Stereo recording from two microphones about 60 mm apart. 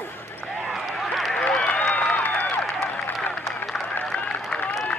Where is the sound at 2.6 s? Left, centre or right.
Centre.